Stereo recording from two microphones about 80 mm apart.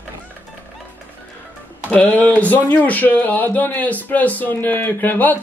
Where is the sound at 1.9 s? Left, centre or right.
Centre.